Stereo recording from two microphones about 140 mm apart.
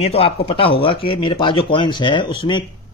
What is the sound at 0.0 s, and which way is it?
A man's voice, 45° left (ahead or behind).